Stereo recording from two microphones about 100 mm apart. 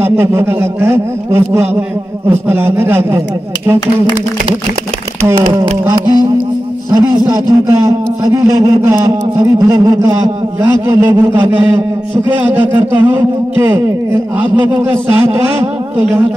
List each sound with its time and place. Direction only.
0.0 s a man's voice: 25° right (ahead or behind)
5.9 s a man's voice: 40° right (ahead or behind)
7.2 s a man's voice: 30° right (ahead or behind)
9.8 s a man's voice: 40° right (ahead or behind)
10.7 s a man's voice: 25° right (ahead or behind)